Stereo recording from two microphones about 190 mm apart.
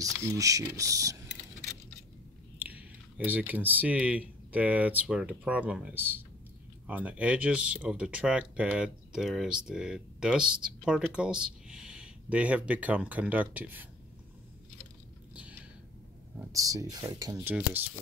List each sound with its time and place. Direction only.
0.0 s speech: 15° right (ahead or behind)
3.3 s speech: 10° right (ahead or behind)
16.5 s speech: 15° right (ahead or behind)